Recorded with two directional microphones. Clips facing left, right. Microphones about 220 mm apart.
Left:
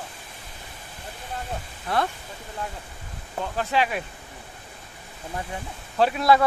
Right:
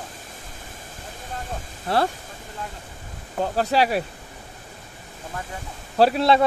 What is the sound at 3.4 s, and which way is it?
Speech, 40° right (ahead or behind).